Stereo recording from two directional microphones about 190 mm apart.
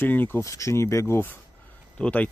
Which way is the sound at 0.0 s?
10° left (ahead or behind).